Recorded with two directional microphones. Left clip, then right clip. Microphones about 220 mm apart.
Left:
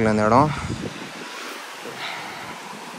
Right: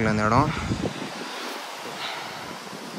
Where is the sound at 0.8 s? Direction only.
45° right (ahead or behind).